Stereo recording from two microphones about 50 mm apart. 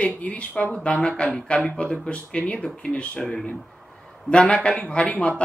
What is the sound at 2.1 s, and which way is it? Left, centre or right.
Speech, left.